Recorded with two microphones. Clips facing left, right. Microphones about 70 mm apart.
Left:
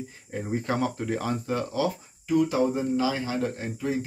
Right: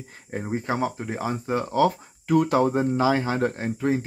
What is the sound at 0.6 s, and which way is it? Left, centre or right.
Speech, right.